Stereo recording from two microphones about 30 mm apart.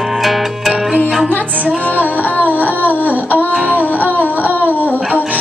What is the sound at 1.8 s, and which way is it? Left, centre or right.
Music, right.